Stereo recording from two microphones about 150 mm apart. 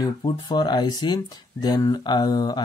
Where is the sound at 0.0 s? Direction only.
30° left (ahead or behind).